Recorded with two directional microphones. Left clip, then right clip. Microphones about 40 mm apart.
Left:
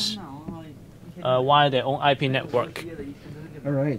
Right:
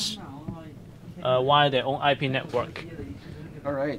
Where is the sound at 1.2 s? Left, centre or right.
Centre.